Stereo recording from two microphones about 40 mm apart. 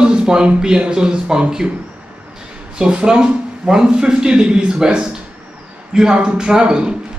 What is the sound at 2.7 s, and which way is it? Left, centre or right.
A man's voice, centre.